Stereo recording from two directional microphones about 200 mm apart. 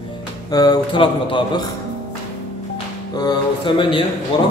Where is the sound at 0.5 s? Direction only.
20° left (ahead or behind).